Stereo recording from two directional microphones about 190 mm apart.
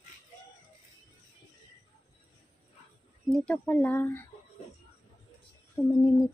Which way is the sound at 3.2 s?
5° left (ahead or behind).